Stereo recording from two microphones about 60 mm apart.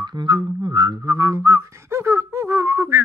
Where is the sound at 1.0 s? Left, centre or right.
Right.